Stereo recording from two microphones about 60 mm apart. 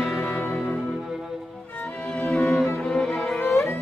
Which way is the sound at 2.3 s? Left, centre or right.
Centre.